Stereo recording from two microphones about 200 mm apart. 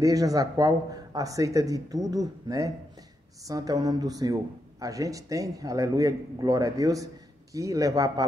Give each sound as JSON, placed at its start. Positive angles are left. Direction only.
{"t": 0.0, "sound": "a man's voice", "side_deg": -20}